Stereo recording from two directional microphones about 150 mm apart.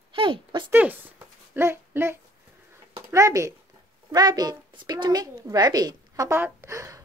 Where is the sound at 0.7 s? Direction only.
10° right (ahead or behind).